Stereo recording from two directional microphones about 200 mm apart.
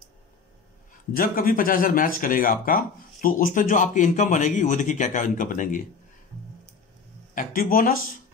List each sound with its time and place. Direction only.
1.1 s speech: 45° left (ahead or behind)
7.3 s speech: 45° left (ahead or behind)